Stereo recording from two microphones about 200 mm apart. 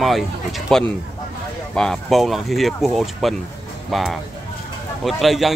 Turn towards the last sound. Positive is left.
turn(degrees=0)  # may be behind; listen again after turning